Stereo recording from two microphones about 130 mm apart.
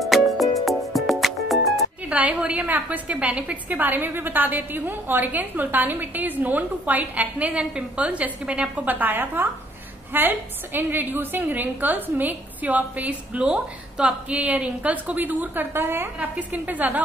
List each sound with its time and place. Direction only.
0.0 s music: centre (ahead or behind)
2.1 s a woman's voice: 10° right (ahead or behind)